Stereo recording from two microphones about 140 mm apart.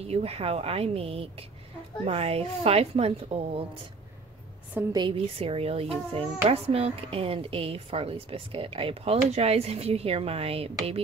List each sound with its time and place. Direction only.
0.0 s a woman's voice: 45° right (ahead or behind)
4.9 s a woman's voice: 40° right (ahead or behind)